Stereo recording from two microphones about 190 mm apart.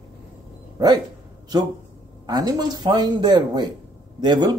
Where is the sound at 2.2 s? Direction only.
20° right (ahead or behind).